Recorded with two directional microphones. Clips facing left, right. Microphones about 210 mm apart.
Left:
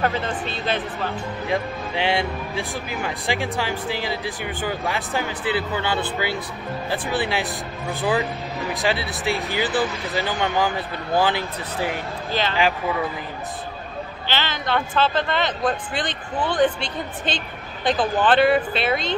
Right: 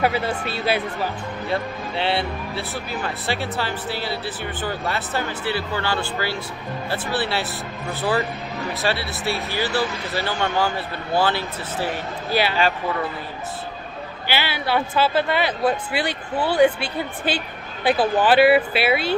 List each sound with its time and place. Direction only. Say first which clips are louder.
0.0 s speech: right 2 dB; 10° right (ahead or behind)
1.5 s speech: left 1 dB; 15° left (ahead or behind)
12.3 s speech: right 4 dB; 10° right (ahead or behind)
12.5 s speech: even; 15° left (ahead or behind)
14.2 s speech: right 2 dB; 10° right (ahead or behind)